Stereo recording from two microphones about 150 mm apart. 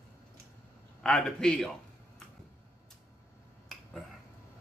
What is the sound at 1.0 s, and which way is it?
Speech, 5° left (ahead or behind).